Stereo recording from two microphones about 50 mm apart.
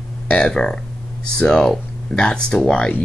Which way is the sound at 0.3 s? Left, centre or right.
Centre.